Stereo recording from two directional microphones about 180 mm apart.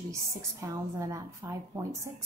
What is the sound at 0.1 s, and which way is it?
A woman's voice, 15° right (ahead or behind).